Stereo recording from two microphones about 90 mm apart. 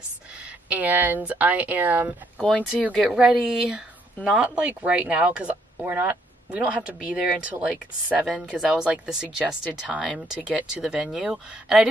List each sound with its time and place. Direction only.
0.7 s speech: 20° right (ahead or behind)
2.3 s speech: 15° left (ahead or behind)
3.1 s speech: 15° right (ahead or behind)